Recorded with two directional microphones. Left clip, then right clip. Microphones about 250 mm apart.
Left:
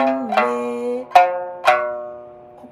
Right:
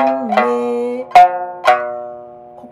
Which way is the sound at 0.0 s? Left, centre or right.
Right.